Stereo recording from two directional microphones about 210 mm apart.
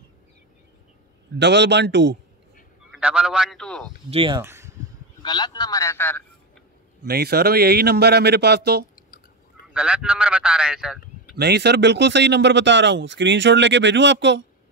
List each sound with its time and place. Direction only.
1.4 s speech: 55° right (ahead or behind)
3.0 s a man's voice: 5° right (ahead or behind)
4.1 s speech: 25° right (ahead or behind)
4.4 s a sound: 15° right (ahead or behind)
5.2 s a man's voice: 20° left (ahead or behind)
7.1 s speech: 50° right (ahead or behind)
9.8 s a man's voice: 5° right (ahead or behind)
11.3 s speech: 50° right (ahead or behind)